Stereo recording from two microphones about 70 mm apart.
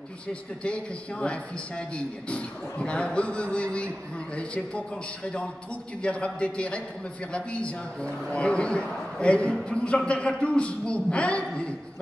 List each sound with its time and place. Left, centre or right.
0.3 s a man's voice: centre
6.0 s a man's voice: centre